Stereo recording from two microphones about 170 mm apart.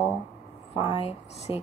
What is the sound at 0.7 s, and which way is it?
Speech, 30° left (ahead or behind).